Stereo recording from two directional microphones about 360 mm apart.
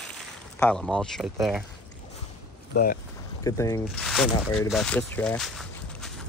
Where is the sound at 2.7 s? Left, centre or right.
Left.